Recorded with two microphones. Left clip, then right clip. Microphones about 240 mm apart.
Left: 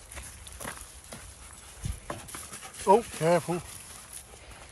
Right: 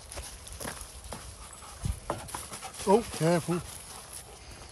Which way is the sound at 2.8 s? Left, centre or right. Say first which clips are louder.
Left 3 dB; centre.